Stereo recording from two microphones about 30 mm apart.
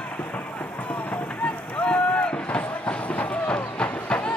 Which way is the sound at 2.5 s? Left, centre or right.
Left.